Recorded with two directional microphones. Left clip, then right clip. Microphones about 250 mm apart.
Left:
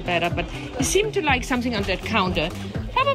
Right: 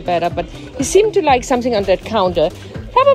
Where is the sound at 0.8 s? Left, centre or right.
Centre.